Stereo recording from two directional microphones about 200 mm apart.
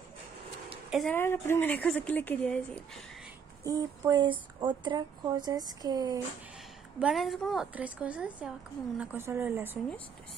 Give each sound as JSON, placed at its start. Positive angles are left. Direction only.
{"t": 0.8, "sound": "speech", "side_deg": 0}
{"t": 1.1, "sound": "speech", "side_deg": 10}
{"t": 3.6, "sound": "a woman's voice", "side_deg": -20}
{"t": 7.0, "sound": "a woman's voice", "side_deg": -5}